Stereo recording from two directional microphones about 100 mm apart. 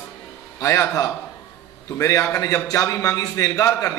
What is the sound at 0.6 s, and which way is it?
A man's voice, 30° left (ahead or behind).